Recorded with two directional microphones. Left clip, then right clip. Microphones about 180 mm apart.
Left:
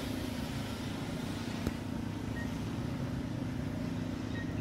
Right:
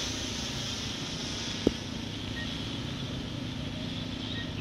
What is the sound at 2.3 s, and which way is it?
Vehicle, 35° left (ahead or behind).